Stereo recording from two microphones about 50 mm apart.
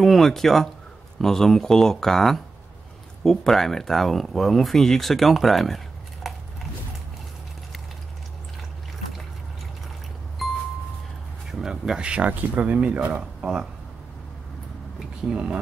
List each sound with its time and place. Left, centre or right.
0.0 s speech: centre
6.2 s biting: centre
10.4 s music: centre
11.5 s speech: centre
15.3 s speech: right